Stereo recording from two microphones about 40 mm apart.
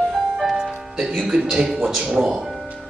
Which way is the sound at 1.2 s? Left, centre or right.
Centre.